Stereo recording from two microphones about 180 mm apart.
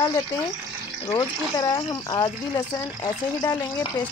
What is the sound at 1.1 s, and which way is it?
Speech, 20° left (ahead or behind).